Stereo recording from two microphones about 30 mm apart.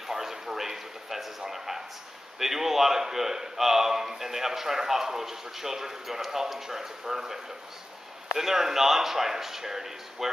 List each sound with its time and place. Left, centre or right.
0.1 s a sound: centre
2.3 s a man's voice: centre
8.4 s a man's voice: centre